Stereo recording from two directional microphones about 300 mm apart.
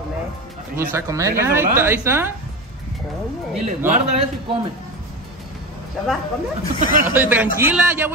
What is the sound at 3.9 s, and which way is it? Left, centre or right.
Speech, right.